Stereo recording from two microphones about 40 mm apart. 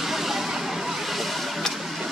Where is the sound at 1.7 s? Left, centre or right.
Centre.